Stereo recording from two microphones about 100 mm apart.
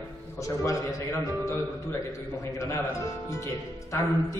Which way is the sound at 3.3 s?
30° left (ahead or behind).